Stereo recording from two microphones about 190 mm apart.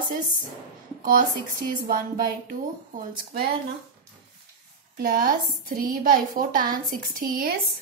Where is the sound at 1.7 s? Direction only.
45° right (ahead or behind).